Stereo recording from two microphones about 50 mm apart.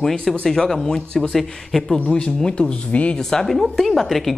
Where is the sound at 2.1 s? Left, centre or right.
Centre.